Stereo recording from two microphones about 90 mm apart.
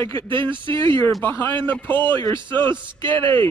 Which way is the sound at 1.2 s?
25° left (ahead or behind).